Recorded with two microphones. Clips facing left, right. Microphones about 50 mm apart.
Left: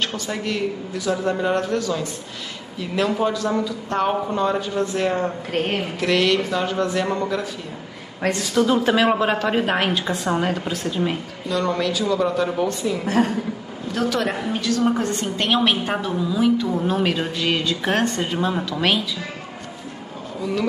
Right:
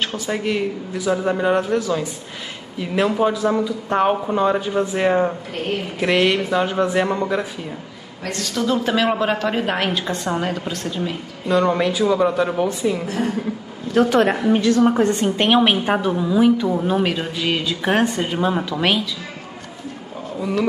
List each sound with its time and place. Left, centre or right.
0.0 s speech: centre
3.1 s speech: centre
8.3 s a woman's voice: centre
11.4 s speech: right
13.9 s a woman's voice: right
16.7 s speech: centre
20.3 s speech: centre